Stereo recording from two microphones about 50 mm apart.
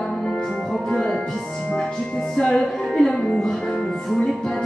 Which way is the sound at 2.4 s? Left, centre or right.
Centre.